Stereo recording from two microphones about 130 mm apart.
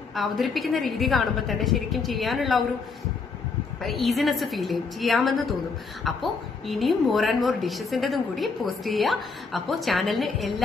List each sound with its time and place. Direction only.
0.1 s a woman's voice: centre (ahead or behind)
3.8 s a woman's voice: centre (ahead or behind)